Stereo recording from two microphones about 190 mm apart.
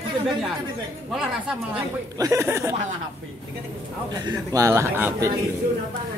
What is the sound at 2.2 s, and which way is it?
Speech, 15° right (ahead or behind).